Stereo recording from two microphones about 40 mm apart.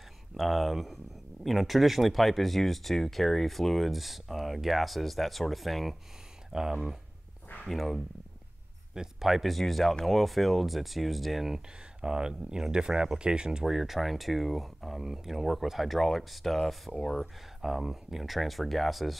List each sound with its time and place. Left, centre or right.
0.4 s speech: centre
6.5 s speech: centre
7.7 s speech: centre
8.9 s speech: centre
11.5 s speech: centre
13.7 s speech: centre
17.6 s speech: centre